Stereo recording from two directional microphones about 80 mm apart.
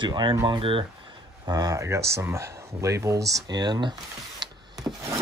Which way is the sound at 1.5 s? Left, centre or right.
Right.